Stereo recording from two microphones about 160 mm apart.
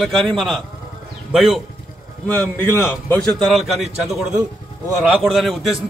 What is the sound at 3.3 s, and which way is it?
A man's voice, centre (ahead or behind).